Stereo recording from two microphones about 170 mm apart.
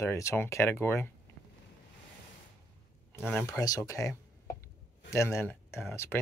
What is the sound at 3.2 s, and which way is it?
Speech, 5° right (ahead or behind).